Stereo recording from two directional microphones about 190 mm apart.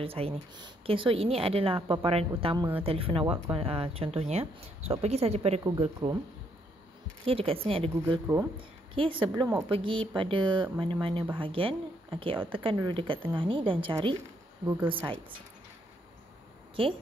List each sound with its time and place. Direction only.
0.0 s speech: 30° right (ahead or behind)
5.6 s speech: 20° right (ahead or behind)
7.2 s speech: 30° right (ahead or behind)